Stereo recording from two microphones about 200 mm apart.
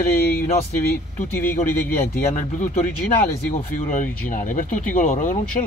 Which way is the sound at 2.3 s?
40° left (ahead or behind).